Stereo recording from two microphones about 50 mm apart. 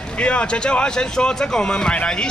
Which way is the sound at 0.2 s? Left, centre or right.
Left.